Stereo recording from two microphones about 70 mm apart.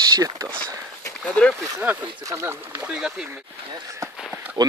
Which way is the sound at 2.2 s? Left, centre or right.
Right.